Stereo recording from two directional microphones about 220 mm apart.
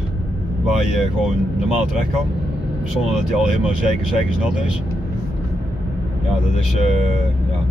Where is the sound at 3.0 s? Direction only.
5° right (ahead or behind).